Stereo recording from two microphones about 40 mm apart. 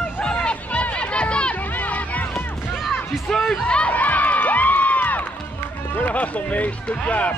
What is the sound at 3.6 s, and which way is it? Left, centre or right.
Crowd, left.